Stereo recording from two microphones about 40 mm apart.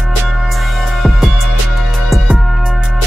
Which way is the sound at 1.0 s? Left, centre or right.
Centre.